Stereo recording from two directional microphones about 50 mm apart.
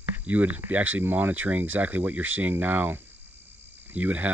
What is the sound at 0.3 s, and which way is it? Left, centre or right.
Speech, right.